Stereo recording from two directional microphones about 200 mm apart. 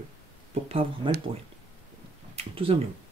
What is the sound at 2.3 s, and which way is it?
Speech, 30° right (ahead or behind).